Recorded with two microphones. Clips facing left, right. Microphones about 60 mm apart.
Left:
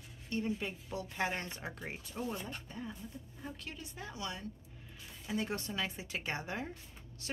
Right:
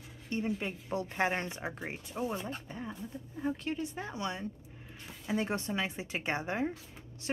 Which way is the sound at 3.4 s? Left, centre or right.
Right.